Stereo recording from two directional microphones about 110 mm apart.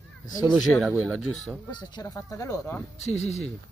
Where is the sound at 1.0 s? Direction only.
10° left (ahead or behind).